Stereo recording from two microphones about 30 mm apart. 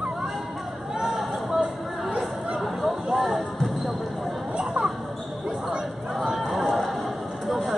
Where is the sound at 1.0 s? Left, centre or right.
Centre.